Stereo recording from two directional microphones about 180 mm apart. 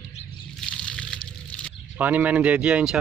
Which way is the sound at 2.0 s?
10° right (ahead or behind).